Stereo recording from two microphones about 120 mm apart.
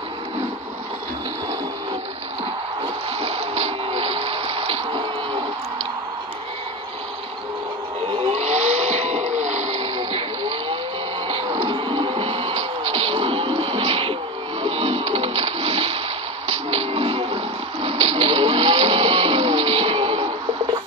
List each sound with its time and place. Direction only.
3.2 s water: 55° right (ahead or behind)
8.1 s vehicle: 60° right (ahead or behind); by 9.7 s 90° right
9.8 s a sound: 45° right (ahead or behind)
11.2 s music: 45° right (ahead or behind)
14.6 s splash: 55° right (ahead or behind)
16.4 s music: 60° right (ahead or behind)